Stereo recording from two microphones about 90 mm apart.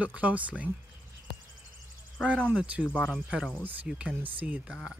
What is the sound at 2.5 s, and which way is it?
Speech, 15° right (ahead or behind).